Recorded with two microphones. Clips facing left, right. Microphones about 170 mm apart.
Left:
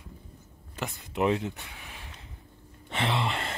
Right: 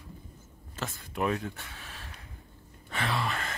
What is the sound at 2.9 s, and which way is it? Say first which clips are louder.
Gasp: left 3 dB; 25° left (ahead or behind).